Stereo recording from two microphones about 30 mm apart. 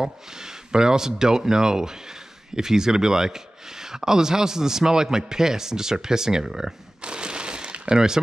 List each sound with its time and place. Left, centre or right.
0.0 s speech: centre
7.0 s a sound: right
7.9 s speech: right